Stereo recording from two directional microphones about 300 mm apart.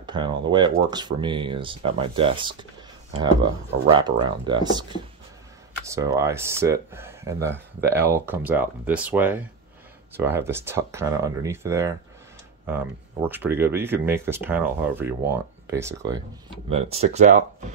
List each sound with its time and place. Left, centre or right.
0.0 s speech: centre
16.6 s speech: centre